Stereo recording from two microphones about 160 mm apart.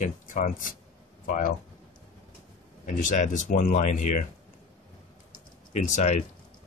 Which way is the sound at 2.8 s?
50° left (ahead or behind).